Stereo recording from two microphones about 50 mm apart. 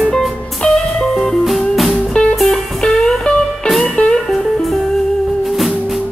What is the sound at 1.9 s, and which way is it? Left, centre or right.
Music, centre.